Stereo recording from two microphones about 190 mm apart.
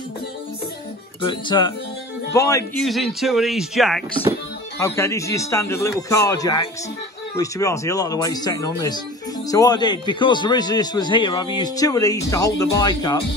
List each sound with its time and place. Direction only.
1.2 s a man's voice: 25° left (ahead or behind)
2.8 s speech: centre (ahead or behind)
4.7 s a man's voice: 15° left (ahead or behind)